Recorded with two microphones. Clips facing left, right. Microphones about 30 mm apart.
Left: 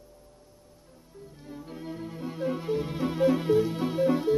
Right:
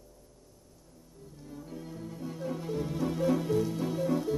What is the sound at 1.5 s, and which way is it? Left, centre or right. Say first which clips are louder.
Music: left 4 dB; left.